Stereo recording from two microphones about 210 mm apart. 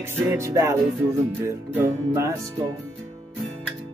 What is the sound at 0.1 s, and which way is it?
Music, 15° right (ahead or behind).